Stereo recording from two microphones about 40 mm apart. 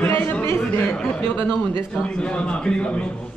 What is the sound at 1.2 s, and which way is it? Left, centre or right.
Speech, left.